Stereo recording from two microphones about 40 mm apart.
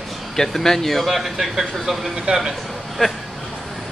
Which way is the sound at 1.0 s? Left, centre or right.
Centre.